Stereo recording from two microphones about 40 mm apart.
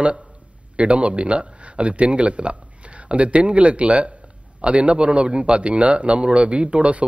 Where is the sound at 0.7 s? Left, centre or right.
Right.